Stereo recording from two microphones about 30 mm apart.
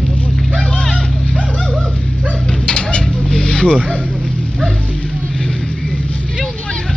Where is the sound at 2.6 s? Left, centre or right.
Left.